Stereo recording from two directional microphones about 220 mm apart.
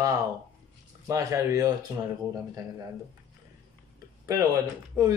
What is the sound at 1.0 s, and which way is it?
Speech, 15° right (ahead or behind).